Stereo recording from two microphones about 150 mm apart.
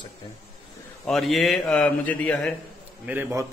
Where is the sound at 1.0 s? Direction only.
Centre (ahead or behind).